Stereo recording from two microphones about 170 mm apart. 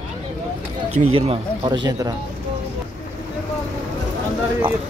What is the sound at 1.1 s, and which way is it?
Speech, 35° right (ahead or behind).